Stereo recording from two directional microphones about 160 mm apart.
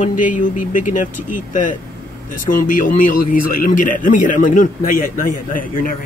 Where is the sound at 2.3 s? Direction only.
55° left (ahead or behind).